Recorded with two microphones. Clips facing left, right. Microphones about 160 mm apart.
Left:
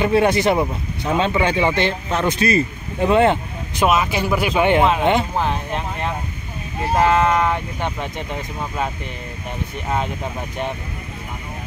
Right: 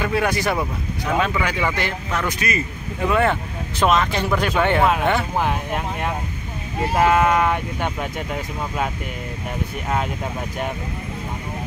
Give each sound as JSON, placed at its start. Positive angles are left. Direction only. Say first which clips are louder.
{"t": 0.0, "sound": "speech", "louder": "left 5 dB", "side_deg": 25}
{"t": 3.8, "sound": "speech", "louder": "left 1 dB", "side_deg": 5}
{"t": 5.4, "sound": "speech", "louder": "even", "side_deg": -10}